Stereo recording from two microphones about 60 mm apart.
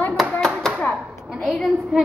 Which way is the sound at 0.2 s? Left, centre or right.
Centre.